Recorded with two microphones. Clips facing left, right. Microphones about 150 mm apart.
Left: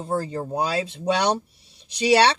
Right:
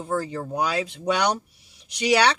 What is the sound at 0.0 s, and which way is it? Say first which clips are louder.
Speech: left 1 dB; 30° left (ahead or behind).